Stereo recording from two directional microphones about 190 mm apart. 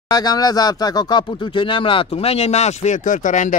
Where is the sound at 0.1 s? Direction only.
20° left (ahead or behind).